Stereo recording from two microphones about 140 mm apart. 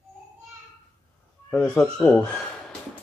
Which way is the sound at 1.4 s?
5° left (ahead or behind).